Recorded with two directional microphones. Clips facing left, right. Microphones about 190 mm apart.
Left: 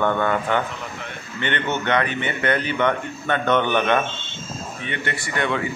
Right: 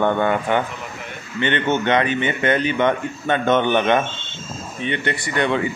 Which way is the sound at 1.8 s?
20° right (ahead or behind).